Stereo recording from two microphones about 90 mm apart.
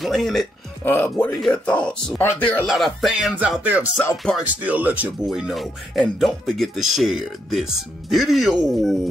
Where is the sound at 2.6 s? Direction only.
Centre (ahead or behind).